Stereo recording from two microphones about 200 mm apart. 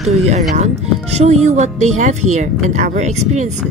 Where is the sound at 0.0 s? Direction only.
35° right (ahead or behind).